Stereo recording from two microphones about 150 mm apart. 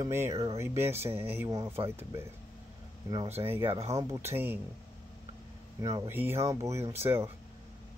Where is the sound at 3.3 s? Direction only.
15° right (ahead or behind).